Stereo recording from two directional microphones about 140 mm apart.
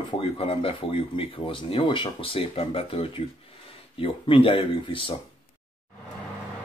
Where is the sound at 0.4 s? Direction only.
40° left (ahead or behind).